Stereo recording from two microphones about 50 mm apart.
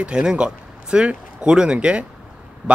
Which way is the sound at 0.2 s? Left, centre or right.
Centre.